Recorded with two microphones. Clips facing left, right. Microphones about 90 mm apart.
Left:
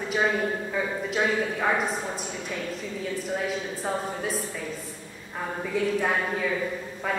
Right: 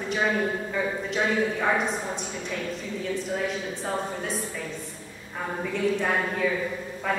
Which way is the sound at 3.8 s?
Centre (ahead or behind).